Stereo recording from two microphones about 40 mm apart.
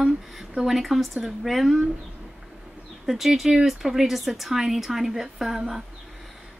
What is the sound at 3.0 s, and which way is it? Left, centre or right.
A woman's voice, centre.